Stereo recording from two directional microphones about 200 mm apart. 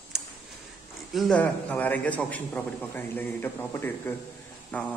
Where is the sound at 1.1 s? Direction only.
Centre (ahead or behind).